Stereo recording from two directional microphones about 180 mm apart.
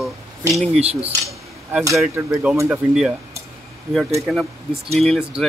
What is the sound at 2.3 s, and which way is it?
Speech, 10° right (ahead or behind).